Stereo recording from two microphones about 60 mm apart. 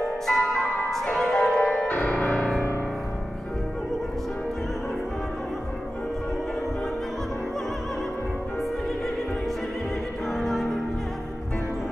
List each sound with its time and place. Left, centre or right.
0.3 s bell: centre
1.0 s music: centre
1.7 s music: centre
2.3 s music: centre
10.3 s music: centre